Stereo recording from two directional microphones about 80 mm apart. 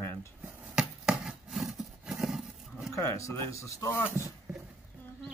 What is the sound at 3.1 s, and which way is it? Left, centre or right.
Speech, left.